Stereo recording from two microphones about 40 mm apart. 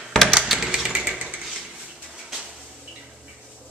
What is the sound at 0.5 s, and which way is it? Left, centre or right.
Tap, centre.